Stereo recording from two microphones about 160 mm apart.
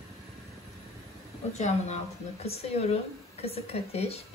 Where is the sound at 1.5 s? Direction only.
45° left (ahead or behind).